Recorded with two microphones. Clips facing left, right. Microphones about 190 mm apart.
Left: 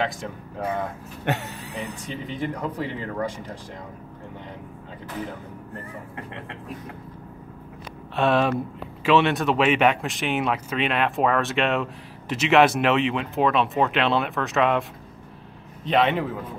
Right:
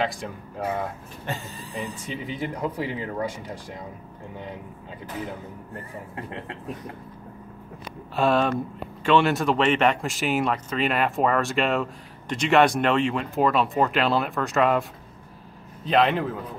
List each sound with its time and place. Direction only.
0.0 s speech: 5° right (ahead or behind)
1.2 s speech: 70° left (ahead or behind)
2.0 s speech: 5° right (ahead or behind)
8.2 s speech: centre (ahead or behind)